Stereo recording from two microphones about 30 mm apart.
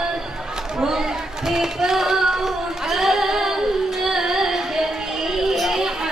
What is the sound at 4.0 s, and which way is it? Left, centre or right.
Child singing, centre.